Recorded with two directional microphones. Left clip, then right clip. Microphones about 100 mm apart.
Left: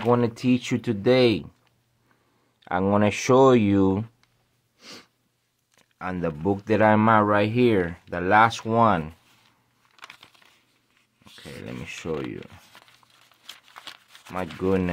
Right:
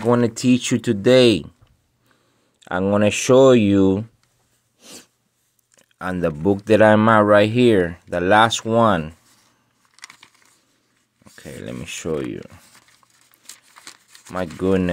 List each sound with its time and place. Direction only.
0.1 s speech: 35° right (ahead or behind)
2.8 s speech: 10° right (ahead or behind)
4.7 s sneeze: 5° left (ahead or behind)
5.8 s a sound: 40° right (ahead or behind)
6.4 s speech: 35° right (ahead or behind)
11.3 s speech: 40° right (ahead or behind)
14.3 s speech: 35° right (ahead or behind)